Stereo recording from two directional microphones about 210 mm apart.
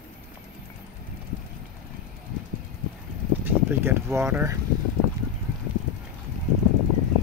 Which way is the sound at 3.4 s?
10° right (ahead or behind).